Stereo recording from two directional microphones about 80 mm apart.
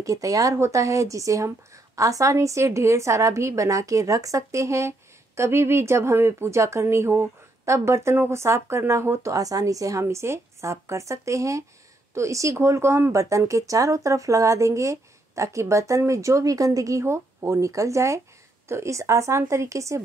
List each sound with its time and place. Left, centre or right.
0.0 s a woman's voice: right
10.0 s a woman's voice: right
17.0 s a woman's voice: right